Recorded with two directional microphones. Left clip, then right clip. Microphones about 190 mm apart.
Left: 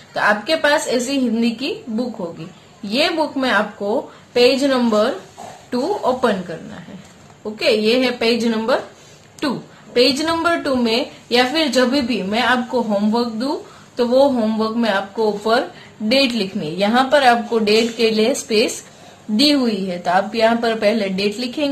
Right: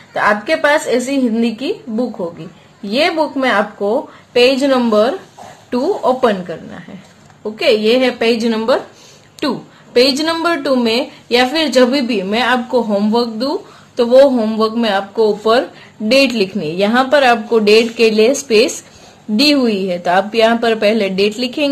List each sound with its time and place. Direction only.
0.1 s a woman's voice: 30° right (ahead or behind)